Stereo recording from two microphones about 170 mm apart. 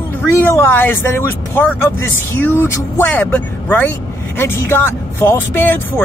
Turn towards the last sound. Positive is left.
turn(degrees=10)  # may be behind; listen again after turning